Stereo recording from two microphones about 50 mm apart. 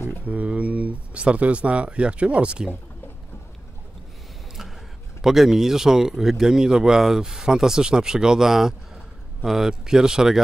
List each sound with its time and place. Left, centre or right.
0.2 s speech: right
5.2 s speech: centre